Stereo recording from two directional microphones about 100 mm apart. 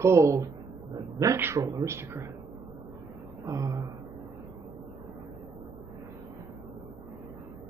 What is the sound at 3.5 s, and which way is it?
Speech, 35° right (ahead or behind).